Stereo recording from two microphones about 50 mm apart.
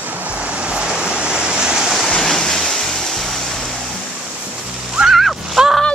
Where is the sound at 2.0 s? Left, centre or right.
Centre.